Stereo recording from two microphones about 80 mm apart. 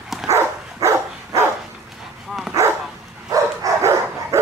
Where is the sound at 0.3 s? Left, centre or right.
Right.